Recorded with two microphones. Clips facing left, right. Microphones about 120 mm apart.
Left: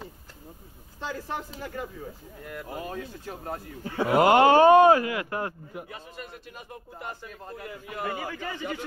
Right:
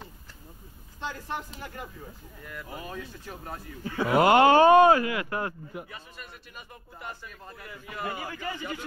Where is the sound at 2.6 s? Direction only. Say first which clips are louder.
Left 3 dB; 50° left (ahead or behind).